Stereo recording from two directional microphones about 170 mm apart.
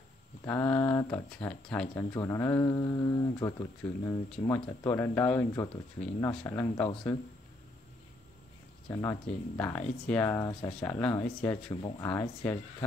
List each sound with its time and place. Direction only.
0.5 s speech: 10° left (ahead or behind)
8.9 s speech: 15° left (ahead or behind)
11.7 s speech: 25° left (ahead or behind)